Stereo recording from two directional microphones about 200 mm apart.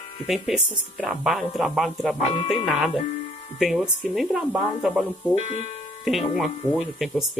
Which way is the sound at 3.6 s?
Centre (ahead or behind).